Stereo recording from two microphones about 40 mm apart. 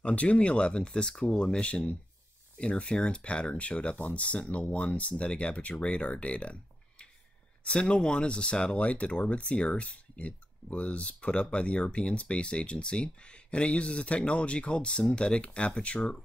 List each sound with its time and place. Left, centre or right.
0.0 s speech: left
8.7 s speech: left